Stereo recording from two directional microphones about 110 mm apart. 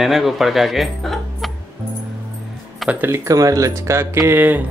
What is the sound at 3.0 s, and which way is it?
Speech, 25° right (ahead or behind).